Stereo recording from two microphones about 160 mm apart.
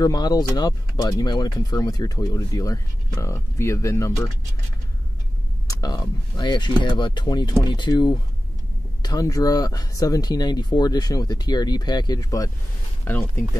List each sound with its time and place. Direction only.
0.0 s speech: 25° left (ahead or behind)
5.7 s speech: 25° left (ahead or behind)